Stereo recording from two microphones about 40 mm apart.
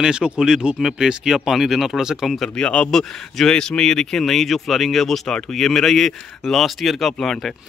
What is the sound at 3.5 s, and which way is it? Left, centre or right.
Speech, centre.